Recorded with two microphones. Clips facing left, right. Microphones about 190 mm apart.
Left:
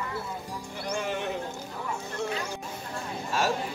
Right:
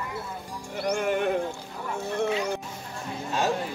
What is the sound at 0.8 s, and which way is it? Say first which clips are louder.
Music: right 6 dB; 55° right (ahead or behind).